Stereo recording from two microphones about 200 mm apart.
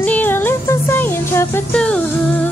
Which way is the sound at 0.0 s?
10° left (ahead or behind).